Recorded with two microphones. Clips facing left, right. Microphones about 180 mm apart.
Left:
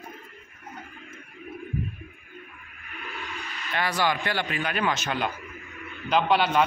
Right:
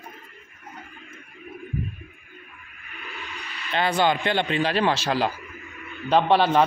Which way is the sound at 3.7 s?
25° right (ahead or behind).